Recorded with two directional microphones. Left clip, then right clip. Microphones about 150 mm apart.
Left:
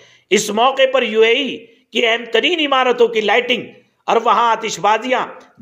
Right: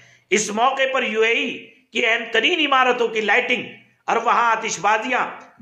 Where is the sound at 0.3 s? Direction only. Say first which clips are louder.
Left 4 dB; 35° left (ahead or behind).